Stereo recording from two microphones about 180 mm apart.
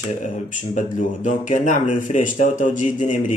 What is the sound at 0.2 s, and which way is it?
Speech, 45° left (ahead or behind).